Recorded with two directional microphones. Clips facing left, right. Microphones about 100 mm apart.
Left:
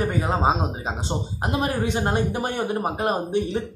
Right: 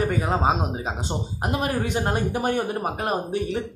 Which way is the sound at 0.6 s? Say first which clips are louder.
Even; 5° right (ahead or behind).